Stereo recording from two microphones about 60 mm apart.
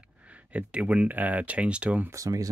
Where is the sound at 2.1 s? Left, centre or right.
Right.